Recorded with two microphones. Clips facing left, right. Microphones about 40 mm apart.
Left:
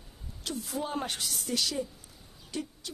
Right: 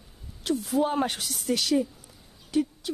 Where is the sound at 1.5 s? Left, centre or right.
Right.